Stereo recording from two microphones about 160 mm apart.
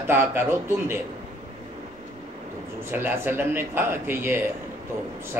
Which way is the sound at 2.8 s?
15° right (ahead or behind).